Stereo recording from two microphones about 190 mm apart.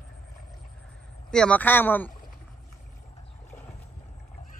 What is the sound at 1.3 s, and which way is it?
Speech, 5° left (ahead or behind).